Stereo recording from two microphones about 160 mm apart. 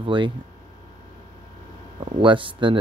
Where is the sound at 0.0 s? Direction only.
30° right (ahead or behind).